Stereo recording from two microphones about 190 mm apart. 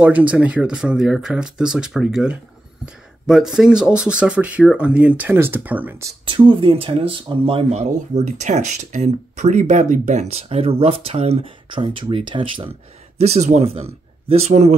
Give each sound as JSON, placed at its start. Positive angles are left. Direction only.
{"t": 0.0, "sound": "speech", "side_deg": -5}
{"t": 6.2, "sound": "speech", "side_deg": -25}